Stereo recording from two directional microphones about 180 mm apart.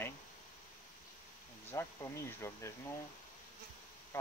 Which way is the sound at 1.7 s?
15° left (ahead or behind).